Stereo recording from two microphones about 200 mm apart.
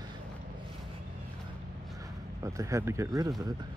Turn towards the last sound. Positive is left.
turn(degrees=-15)  # may be behind; listen again after turning